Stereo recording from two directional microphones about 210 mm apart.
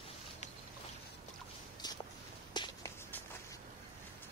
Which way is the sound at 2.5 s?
20° left (ahead or behind).